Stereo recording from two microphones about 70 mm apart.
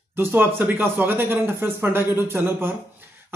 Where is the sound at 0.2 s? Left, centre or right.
Right.